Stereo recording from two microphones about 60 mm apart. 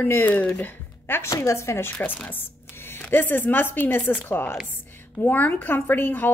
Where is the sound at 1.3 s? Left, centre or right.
Left.